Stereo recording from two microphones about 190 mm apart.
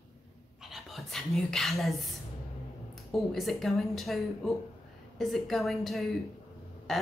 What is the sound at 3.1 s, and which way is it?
A woman's voice, centre (ahead or behind).